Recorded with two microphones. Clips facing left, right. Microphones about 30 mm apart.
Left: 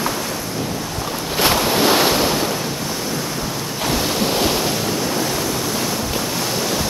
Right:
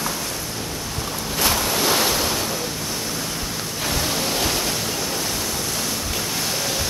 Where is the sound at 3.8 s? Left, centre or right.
Centre.